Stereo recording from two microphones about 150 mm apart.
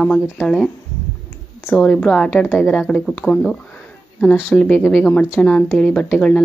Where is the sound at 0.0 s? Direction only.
5° left (ahead or behind).